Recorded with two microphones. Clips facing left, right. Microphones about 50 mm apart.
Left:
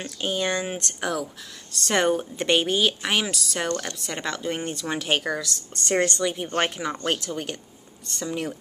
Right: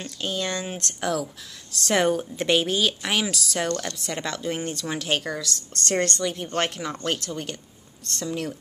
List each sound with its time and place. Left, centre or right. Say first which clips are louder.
0.0 s speech: left 2 dB; centre